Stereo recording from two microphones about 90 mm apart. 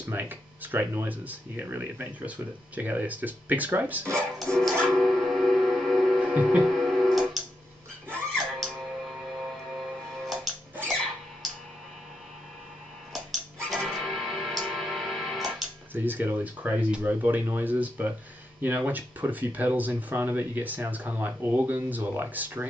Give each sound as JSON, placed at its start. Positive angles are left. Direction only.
{"t": 0.1, "sound": "speech", "side_deg": -20}
{"t": 4.4, "sound": "music", "side_deg": 5}
{"t": 4.9, "sound": "a sound", "side_deg": 0}
{"t": 6.1, "sound": "music", "side_deg": -15}
{"t": 6.6, "sound": "music", "side_deg": 5}
{"t": 9.8, "sound": "music", "side_deg": 0}
{"t": 13.1, "sound": "music", "side_deg": 0}
{"t": 15.9, "sound": "speech", "side_deg": -20}